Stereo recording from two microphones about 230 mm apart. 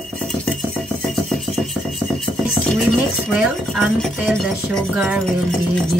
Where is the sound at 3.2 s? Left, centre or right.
Centre.